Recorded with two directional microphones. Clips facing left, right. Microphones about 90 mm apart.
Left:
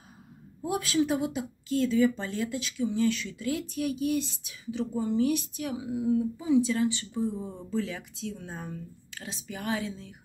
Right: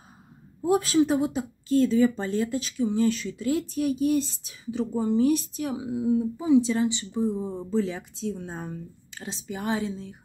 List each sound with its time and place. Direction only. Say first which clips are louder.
0.6 s speech: right 6 dB; 30° right (ahead or behind)